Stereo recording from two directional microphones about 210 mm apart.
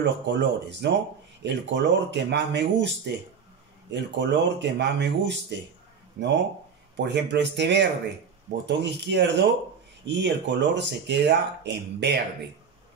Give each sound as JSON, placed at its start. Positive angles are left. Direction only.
{"t": 0.0, "sound": "speech", "side_deg": -55}
{"t": 3.9, "sound": "speech", "side_deg": -55}